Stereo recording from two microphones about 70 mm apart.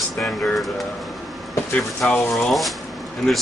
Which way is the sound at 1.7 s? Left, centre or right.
Centre.